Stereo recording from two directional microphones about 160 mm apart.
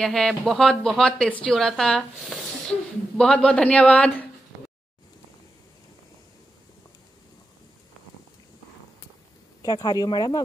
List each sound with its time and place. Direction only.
0.0 s speech: 5° left (ahead or behind)
9.6 s speech: 25° left (ahead or behind)